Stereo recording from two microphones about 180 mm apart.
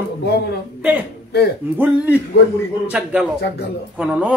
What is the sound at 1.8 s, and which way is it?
Speech, 10° right (ahead or behind).